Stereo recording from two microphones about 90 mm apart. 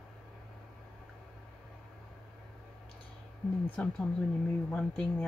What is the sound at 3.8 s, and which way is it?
Speech, 15° left (ahead or behind).